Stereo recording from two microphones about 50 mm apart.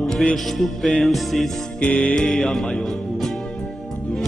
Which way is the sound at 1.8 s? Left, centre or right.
Left.